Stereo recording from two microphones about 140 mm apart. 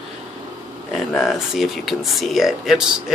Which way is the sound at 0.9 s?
Centre (ahead or behind).